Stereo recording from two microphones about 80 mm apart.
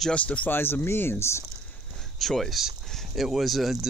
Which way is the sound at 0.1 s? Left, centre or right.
Centre.